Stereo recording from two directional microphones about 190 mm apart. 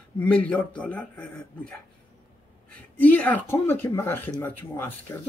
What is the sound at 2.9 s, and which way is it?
Speech, 10° left (ahead or behind).